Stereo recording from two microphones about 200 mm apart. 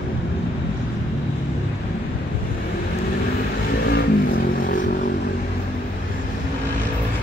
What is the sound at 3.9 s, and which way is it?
Vehicle, 45° left (ahead or behind).